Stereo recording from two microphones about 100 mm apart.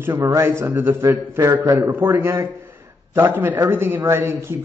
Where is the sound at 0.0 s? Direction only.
25° right (ahead or behind).